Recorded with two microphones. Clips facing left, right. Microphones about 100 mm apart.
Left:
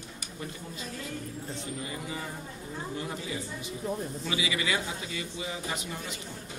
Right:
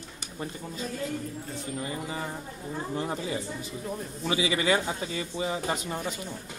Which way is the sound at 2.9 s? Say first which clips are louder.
Right 6 dB; 35° right (ahead or behind).